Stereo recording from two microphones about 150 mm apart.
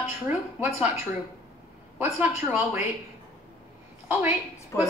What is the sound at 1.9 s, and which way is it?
Speech, 15° right (ahead or behind).